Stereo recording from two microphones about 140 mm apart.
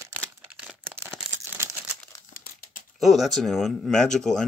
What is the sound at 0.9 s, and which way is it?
Crumpling, 15° right (ahead or behind).